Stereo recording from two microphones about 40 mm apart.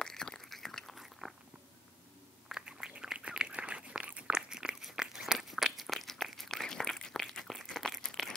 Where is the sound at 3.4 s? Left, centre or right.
Right.